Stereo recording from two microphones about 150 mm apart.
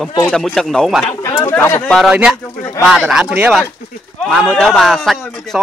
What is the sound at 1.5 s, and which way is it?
Speech, 15° left (ahead or behind).